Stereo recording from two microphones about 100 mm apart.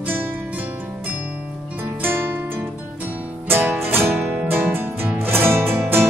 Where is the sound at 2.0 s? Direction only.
20° right (ahead or behind).